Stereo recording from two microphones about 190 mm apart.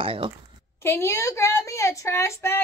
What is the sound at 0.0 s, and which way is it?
Speech, 30° right (ahead or behind).